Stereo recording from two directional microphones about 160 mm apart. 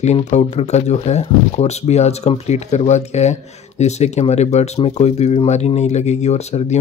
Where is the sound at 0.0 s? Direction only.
45° left (ahead or behind).